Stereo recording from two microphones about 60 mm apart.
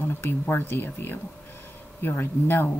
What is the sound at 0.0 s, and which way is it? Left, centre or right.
Speech, left.